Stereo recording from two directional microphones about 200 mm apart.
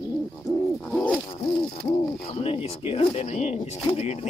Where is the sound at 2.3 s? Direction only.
30° left (ahead or behind).